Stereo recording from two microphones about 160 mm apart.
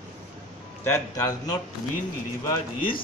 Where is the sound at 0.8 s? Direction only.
20° left (ahead or behind).